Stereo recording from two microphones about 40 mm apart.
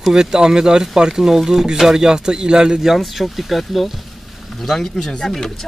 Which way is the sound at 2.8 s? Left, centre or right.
Centre.